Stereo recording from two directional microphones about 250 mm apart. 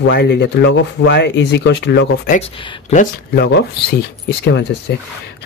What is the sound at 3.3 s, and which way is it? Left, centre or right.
Speech, left.